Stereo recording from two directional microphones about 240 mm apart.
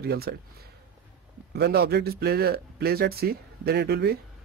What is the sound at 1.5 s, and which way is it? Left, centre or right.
Speech, right.